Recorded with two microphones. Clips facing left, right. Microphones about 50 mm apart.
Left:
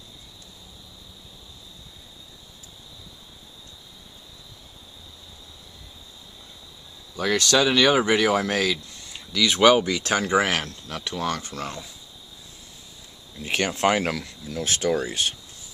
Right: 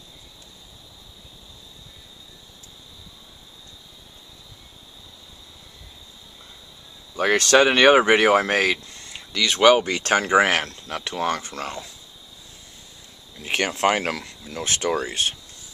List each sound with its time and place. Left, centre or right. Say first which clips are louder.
7.2 s speech: right 4 dB; right
9.1 s a sound: left 1 dB; centre
9.8 s speech: right 3 dB; right
13.5 s speech: right 1 dB; right